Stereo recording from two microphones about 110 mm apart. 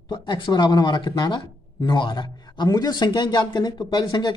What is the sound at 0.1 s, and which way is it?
Speech, 45° left (ahead or behind).